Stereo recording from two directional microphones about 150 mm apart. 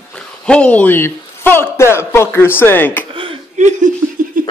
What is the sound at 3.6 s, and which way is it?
Laughter, 55° right (ahead or behind).